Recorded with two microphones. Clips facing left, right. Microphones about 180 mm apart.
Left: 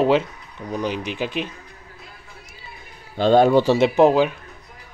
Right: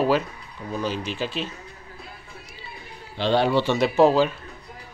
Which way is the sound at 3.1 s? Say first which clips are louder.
Left 6 dB; 45° left (ahead or behind).